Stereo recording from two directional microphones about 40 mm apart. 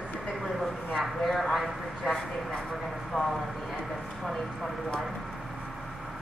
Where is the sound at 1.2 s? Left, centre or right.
Centre.